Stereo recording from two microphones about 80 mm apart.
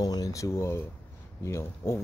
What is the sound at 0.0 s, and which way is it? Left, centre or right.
Speech, left.